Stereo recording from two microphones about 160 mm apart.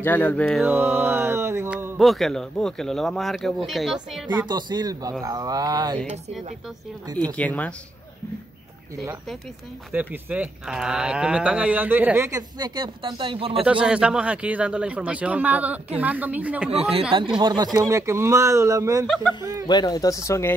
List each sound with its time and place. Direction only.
0.0 s mantra: 10° left (ahead or behind)
0.7 s mantra: 10° right (ahead or behind)
2.0 s speech: centre (ahead or behind)
4.3 s speech: 25° right (ahead or behind)
7.2 s mantra: 10° left (ahead or behind)
9.9 s speech: 10° right (ahead or behind)
12.3 s speech: 25° right (ahead or behind)
13.7 s speech: 5° right (ahead or behind)
17.4 s speech: 25° right (ahead or behind)
19.0 s speech: centre (ahead or behind)
19.7 s speech: 25° left (ahead or behind)